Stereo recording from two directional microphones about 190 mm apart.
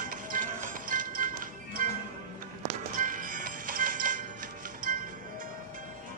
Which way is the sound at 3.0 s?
45° right (ahead or behind).